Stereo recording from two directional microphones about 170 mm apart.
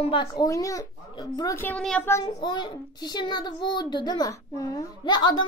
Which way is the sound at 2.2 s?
25° left (ahead or behind).